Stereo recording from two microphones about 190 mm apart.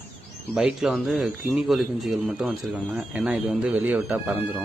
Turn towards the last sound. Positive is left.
turn(degrees=-10)  # may be behind; listen again after turning